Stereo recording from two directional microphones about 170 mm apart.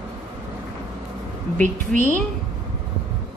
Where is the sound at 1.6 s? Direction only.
50° right (ahead or behind).